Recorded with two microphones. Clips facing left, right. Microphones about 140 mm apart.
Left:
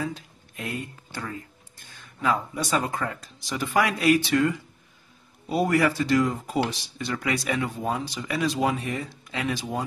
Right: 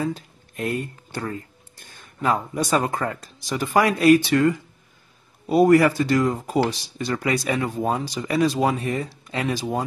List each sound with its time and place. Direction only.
0.0 s speech: 45° right (ahead or behind)